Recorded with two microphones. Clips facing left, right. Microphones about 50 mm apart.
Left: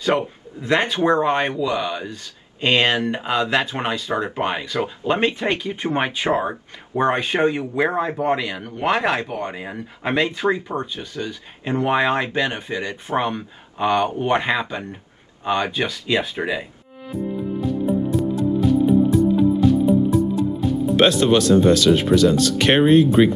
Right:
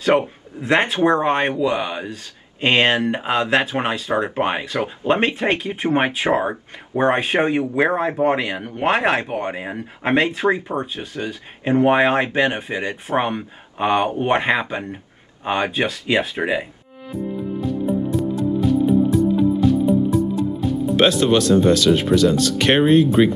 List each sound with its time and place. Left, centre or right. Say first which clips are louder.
0.0 s speech: right 3 dB; right
17.1 s music: even; centre